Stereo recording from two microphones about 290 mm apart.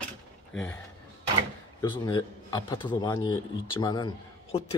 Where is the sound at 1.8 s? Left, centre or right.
Centre.